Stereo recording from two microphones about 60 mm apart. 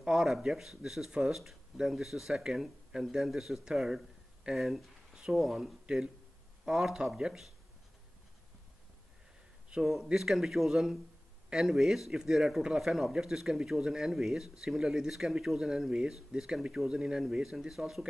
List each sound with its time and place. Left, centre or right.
0.0 s speech: centre
9.7 s a man's voice: centre